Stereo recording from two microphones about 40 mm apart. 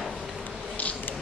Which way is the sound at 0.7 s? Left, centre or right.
Left.